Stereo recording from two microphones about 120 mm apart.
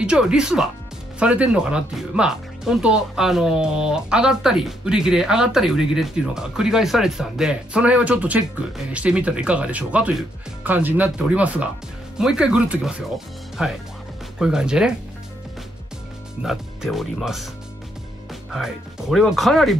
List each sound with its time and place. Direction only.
0.0 s speech: 10° right (ahead or behind)
16.4 s speech: 5° right (ahead or behind)
18.5 s speech: 5° right (ahead or behind)